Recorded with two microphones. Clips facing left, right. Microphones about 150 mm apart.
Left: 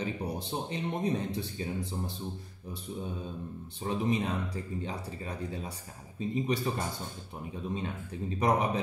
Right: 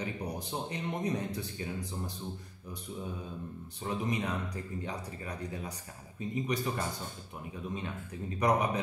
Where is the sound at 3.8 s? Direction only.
25° left (ahead or behind).